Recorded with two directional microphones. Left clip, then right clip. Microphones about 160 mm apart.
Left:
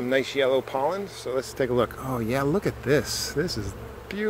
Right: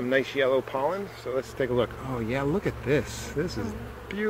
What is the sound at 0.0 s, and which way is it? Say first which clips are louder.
Speech: left 1 dB; 20° left (ahead or behind).